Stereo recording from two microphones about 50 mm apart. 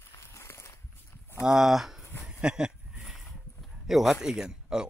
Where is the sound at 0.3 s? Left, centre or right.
Left.